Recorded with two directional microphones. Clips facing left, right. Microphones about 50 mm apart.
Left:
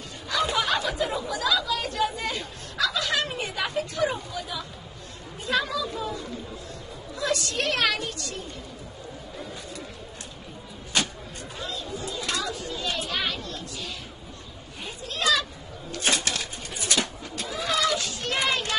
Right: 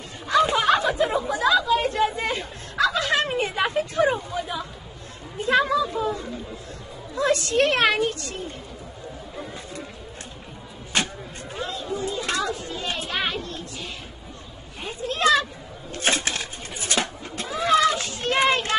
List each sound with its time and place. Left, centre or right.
0.3 s chatter: right
5.4 s speech: right
10.9 s vehicle: right
14.8 s speech: right
15.9 s cat: right